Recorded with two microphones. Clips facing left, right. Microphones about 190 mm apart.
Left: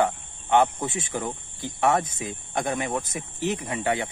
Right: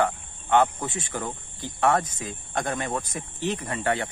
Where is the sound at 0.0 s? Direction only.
15° left (ahead or behind).